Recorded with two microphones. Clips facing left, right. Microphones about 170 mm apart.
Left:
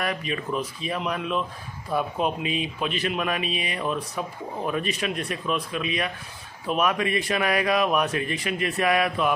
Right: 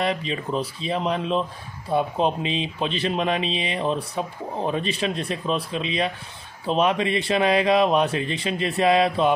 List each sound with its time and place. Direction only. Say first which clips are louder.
0.0 s speech: right 3 dB; 25° right (ahead or behind)